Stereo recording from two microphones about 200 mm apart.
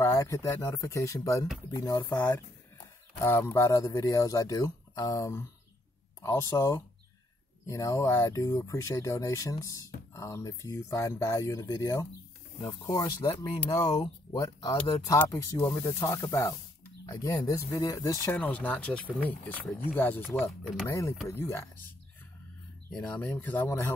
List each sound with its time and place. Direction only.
0.0 s speech: 15° left (ahead or behind)
13.7 s speech: 25° left (ahead or behind)
22.8 s speech: 5° left (ahead or behind)